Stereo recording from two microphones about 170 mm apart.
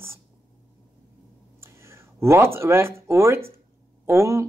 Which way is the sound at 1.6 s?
15° right (ahead or behind).